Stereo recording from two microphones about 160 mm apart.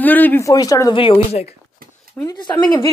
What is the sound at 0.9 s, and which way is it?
Speech, 35° left (ahead or behind).